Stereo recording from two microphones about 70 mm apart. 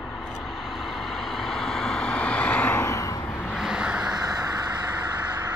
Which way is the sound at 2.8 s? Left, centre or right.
Left.